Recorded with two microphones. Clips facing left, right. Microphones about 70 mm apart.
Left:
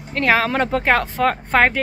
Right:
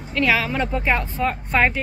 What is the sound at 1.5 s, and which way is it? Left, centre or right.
Speech, left.